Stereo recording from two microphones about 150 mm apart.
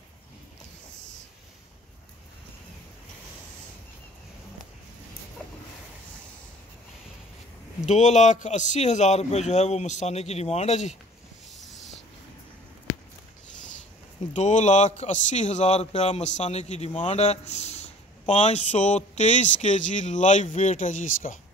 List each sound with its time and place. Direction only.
7.8 s a man's voice: 50° left (ahead or behind)
11.6 s a sound: centre (ahead or behind)
14.3 s a man's voice: 50° left (ahead or behind)